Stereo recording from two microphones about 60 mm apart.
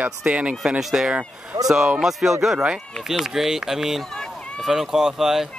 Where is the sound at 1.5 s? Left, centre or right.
Right.